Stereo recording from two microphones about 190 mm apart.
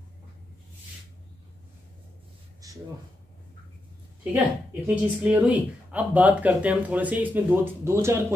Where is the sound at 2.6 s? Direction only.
20° right (ahead or behind).